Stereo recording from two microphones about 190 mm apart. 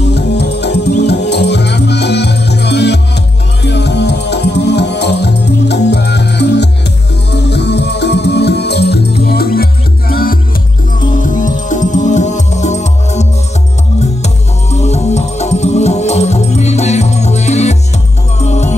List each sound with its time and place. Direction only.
0.0 s music: 60° left (ahead or behind); by 18.8 s 35° left (ahead or behind)